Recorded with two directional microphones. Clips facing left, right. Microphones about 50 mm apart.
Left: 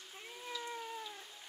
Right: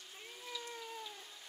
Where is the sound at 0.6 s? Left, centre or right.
Left.